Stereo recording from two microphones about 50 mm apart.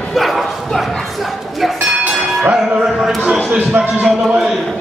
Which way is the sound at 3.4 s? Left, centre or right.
Right.